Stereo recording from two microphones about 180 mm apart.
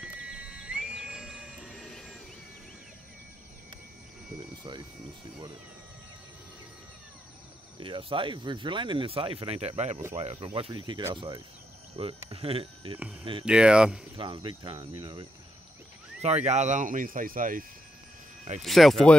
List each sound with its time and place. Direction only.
0.0 s a sound: 5° right (ahead or behind)
4.4 s speech: 25° right (ahead or behind)
7.8 s speech: 30° right (ahead or behind)
13.5 s speech: 5° right (ahead or behind)
14.1 s speech: 25° right (ahead or behind)
16.4 s speech: 40° right (ahead or behind)
18.6 s speech: centre (ahead or behind)